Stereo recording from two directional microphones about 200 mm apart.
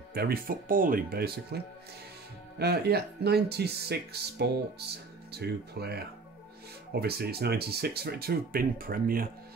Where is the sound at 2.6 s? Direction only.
55° right (ahead or behind).